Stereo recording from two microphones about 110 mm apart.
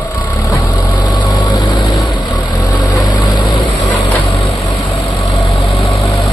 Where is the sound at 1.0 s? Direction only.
40° left (ahead or behind).